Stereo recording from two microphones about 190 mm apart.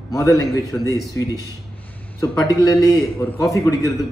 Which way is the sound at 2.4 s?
20° left (ahead or behind).